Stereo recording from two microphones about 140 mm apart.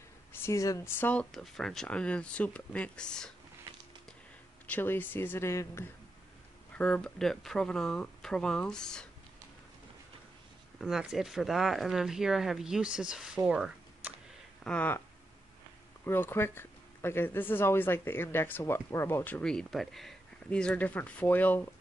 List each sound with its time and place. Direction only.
0.3 s speech: 20° left (ahead or behind)
1.3 s speech: centre (ahead or behind)
4.6 s speech: 15° left (ahead or behind)
6.7 s speech: 10° left (ahead or behind)
10.8 s speech: centre (ahead or behind)
13.5 s a sound: 5° right (ahead or behind)
14.6 s speech: 10° left (ahead or behind)
16.0 s speech: 15° left (ahead or behind)